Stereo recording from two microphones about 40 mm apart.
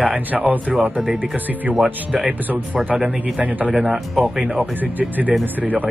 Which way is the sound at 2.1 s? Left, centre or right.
Centre.